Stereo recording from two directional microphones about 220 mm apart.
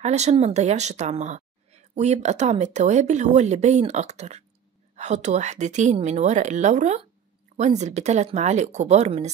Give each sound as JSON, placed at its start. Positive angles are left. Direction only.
{"t": 0.0, "sound": "a woman's voice", "side_deg": -30}